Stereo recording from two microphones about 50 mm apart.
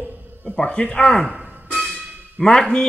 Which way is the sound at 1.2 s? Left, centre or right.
Centre.